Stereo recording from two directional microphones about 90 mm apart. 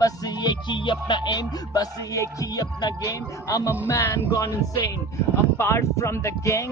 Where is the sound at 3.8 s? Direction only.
35° left (ahead or behind).